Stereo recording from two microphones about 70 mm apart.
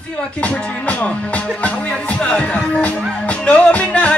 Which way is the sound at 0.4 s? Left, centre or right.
Centre.